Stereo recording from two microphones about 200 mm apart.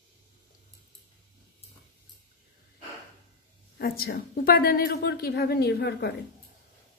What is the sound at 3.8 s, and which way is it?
A woman's voice, 50° left (ahead or behind).